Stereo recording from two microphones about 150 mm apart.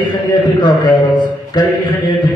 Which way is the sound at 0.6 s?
30° left (ahead or behind).